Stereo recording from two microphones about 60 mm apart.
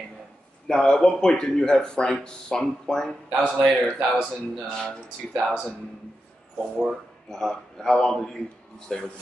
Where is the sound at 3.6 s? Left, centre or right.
Centre.